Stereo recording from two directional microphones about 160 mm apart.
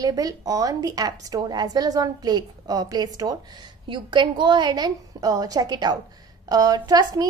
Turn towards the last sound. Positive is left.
turn(degrees=-25)  # may be behind; listen again after turning